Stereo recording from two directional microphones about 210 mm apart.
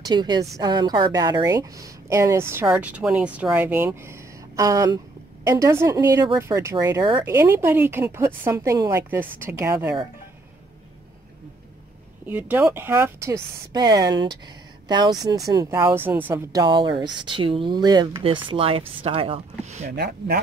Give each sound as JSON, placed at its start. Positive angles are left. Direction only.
{"t": 0.0, "sound": "a woman's voice", "side_deg": -20}
{"t": 12.3, "sound": "a woman's voice", "side_deg": -10}
{"t": 20.0, "sound": "speech", "side_deg": -50}